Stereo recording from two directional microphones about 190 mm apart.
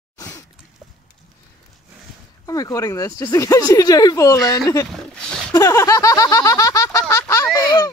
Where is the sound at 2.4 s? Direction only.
20° left (ahead or behind).